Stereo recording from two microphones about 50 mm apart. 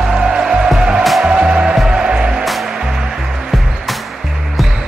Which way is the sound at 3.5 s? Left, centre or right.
Centre.